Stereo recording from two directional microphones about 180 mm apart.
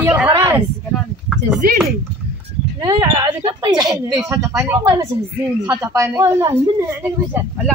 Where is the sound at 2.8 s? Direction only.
25° right (ahead or behind).